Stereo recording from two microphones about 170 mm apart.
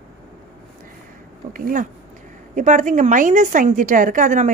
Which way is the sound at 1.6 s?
55° right (ahead or behind).